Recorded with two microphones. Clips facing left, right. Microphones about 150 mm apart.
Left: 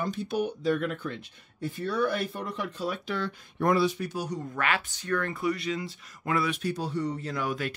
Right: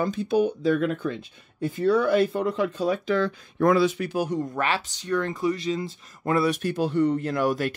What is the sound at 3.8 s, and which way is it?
Speech, 85° right.